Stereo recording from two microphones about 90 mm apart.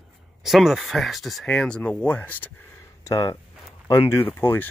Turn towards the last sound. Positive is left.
turn(degrees=25)  # may be behind; listen again after turning